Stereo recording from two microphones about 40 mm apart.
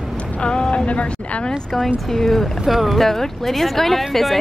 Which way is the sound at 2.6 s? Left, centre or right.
Centre.